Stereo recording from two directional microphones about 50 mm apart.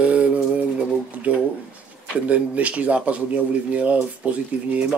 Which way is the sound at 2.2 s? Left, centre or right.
Right.